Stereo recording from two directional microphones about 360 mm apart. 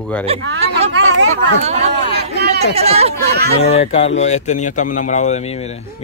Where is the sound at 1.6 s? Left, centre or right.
Centre.